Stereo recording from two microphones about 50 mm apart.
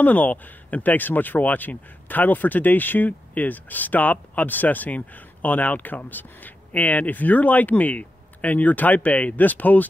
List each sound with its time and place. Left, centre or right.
0.0 s speech: left